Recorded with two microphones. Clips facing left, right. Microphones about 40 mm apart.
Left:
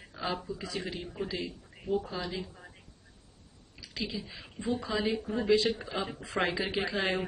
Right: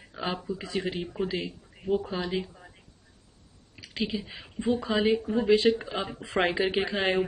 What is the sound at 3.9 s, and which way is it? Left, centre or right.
A man's voice, right.